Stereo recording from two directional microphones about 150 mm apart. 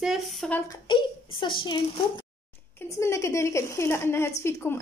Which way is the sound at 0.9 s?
35° left (ahead or behind).